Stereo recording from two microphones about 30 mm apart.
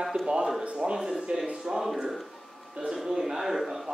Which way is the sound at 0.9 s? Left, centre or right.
Centre.